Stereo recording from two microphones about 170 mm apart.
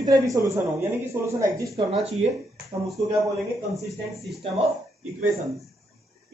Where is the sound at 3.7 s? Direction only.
Centre (ahead or behind).